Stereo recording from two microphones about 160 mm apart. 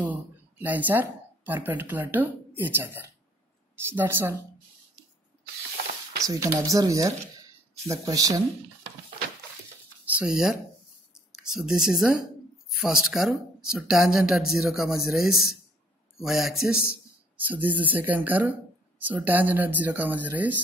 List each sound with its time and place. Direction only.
0.1 s speech: 10° right (ahead or behind)
6.2 s speech: 20° right (ahead or behind)
10.1 s speech: 5° right (ahead or behind)